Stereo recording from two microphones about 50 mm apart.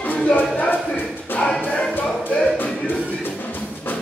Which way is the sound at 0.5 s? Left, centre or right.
Left.